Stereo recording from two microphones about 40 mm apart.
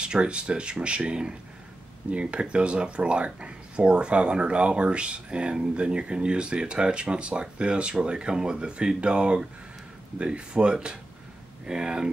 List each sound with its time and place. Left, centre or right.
0.0 s speech: right